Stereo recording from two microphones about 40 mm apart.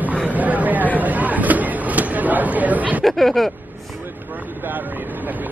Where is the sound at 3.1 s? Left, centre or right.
Centre.